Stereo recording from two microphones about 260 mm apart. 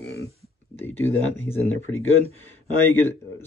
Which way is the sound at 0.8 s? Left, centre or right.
Centre.